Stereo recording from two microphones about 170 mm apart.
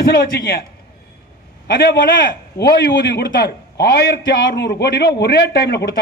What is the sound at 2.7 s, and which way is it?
A man's voice, 85° left.